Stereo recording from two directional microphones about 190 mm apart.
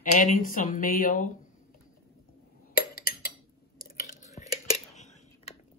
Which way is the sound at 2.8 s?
50° left (ahead or behind).